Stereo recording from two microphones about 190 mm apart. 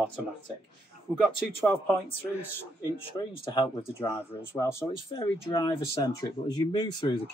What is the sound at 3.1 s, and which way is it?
Speech, 20° left (ahead or behind).